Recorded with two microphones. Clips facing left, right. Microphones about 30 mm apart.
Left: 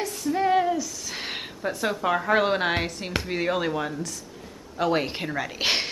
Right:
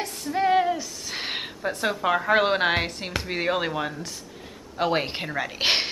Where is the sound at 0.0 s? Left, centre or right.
Centre.